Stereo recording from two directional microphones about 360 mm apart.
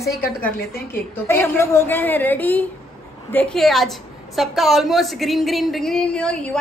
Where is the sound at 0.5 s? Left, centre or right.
Left.